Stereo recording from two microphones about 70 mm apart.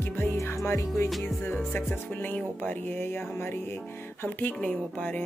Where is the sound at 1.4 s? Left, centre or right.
Left.